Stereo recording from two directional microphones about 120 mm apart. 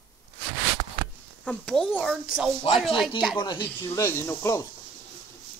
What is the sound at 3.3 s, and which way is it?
Speech, 35° left (ahead or behind).